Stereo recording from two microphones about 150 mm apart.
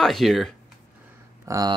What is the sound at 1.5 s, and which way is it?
Speech, 25° right (ahead or behind).